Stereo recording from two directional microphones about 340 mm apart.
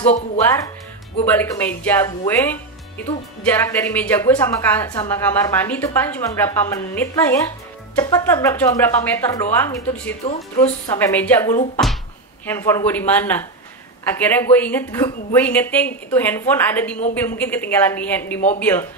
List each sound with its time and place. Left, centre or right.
1.2 s speech: centre